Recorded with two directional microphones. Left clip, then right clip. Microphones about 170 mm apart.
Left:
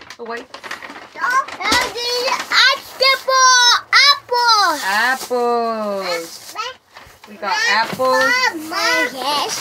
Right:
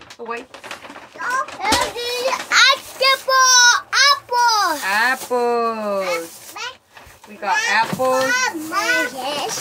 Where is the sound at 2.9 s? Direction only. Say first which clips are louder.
Left 1 dB; 10° left (ahead or behind).